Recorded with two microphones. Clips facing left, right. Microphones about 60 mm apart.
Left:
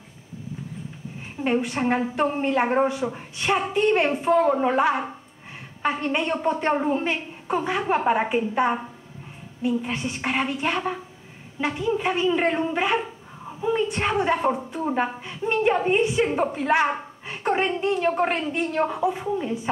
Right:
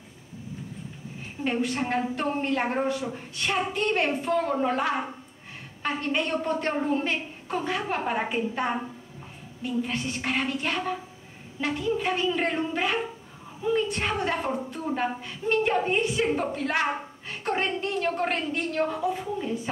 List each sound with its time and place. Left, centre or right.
1.4 s a woman's voice: centre